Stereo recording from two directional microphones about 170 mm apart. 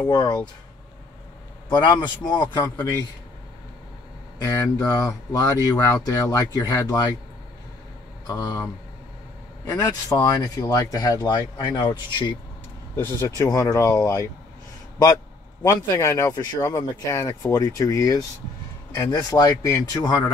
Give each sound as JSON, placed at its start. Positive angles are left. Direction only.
{"t": 0.1, "sound": "speech", "side_deg": 25}
{"t": 1.7, "sound": "speech", "side_deg": 25}
{"t": 4.4, "sound": "speech", "side_deg": 20}
{"t": 8.3, "sound": "speech", "side_deg": 20}
{"t": 9.7, "sound": "speech", "side_deg": 20}
{"t": 12.9, "sound": "speech", "side_deg": 15}
{"t": 15.6, "sound": "speech", "side_deg": 15}